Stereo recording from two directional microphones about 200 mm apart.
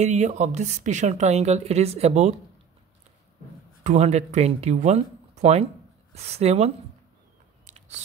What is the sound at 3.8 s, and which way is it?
Speech, 35° right (ahead or behind).